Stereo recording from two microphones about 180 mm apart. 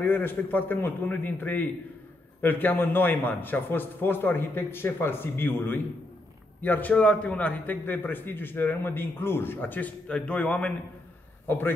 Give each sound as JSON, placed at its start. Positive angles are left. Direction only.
{"t": 0.0, "sound": "a man's voice", "side_deg": 10}